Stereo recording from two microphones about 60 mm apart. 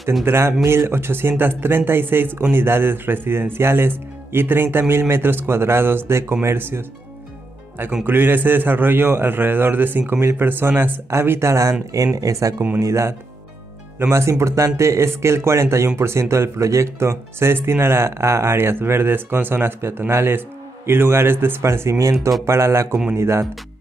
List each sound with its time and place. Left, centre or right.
0.2 s a man's voice: right
8.0 s a man's voice: right
11.1 s speech: right
12.2 s speech: right
12.7 s speech: right
14.4 s speech: right